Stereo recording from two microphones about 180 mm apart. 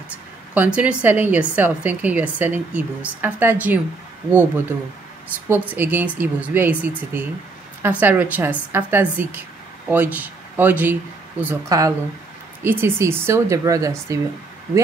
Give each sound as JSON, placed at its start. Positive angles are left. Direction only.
{"t": 0.6, "sound": "speech", "side_deg": -5}
{"t": 5.3, "sound": "speech", "side_deg": -10}